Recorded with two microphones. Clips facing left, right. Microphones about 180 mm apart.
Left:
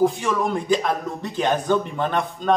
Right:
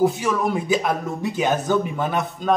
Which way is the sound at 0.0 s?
5° right (ahead or behind).